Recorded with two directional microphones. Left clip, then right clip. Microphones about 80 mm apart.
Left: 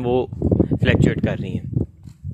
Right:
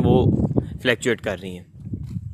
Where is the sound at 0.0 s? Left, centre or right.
Centre.